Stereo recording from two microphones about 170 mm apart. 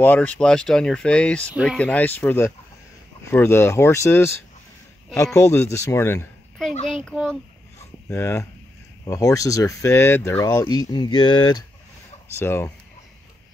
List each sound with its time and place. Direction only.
0.0 s speech: 10° left (ahead or behind)
1.8 s speech: 10° left (ahead or behind)
6.7 s a child's voice: 35° left (ahead or behind)
7.1 s speech: 5° left (ahead or behind)
8.1 s speech: 15° left (ahead or behind)
12.4 s speech: 15° left (ahead or behind)